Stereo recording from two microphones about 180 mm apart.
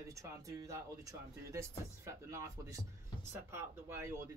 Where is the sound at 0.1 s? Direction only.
20° right (ahead or behind).